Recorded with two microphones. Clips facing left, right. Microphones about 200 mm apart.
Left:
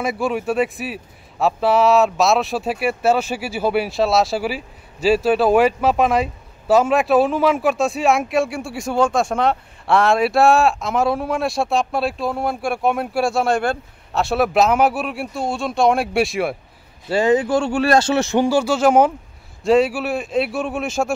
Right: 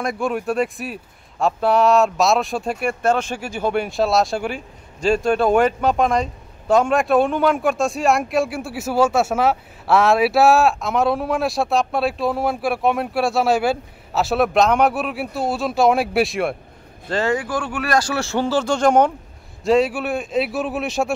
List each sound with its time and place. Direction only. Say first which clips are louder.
0.0 s speech: left 1 dB; 5° left (ahead or behind)
17.1 s speech: left 5 dB; 15° left (ahead or behind); by 21.1 s centre (ahead or behind)